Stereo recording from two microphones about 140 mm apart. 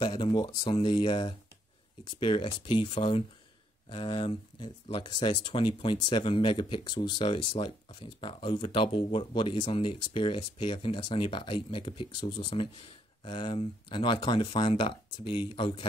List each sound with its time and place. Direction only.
0.0 s speech: 30° left (ahead or behind)